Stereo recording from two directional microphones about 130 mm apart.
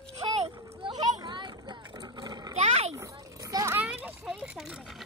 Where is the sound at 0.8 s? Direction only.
35° right (ahead or behind).